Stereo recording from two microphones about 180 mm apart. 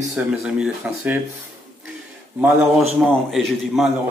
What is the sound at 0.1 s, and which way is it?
Speech, 5° right (ahead or behind).